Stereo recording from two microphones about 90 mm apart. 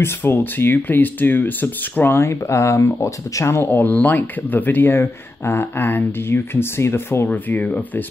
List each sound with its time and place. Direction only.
0.0 s speech: 25° left (ahead or behind)
7.2 s speech: 15° left (ahead or behind)